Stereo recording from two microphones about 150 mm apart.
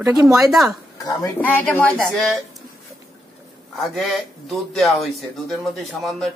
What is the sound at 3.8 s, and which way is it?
Speech, centre (ahead or behind).